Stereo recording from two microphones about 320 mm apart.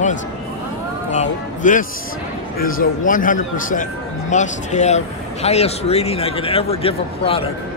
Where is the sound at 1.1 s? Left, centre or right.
Left.